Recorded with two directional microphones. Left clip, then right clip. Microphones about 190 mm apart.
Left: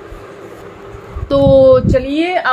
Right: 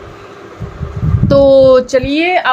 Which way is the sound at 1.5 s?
45° right (ahead or behind).